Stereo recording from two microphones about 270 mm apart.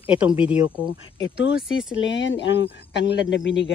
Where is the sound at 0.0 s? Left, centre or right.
Centre.